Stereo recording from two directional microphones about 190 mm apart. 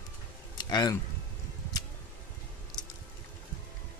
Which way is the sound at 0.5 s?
20° left (ahead or behind).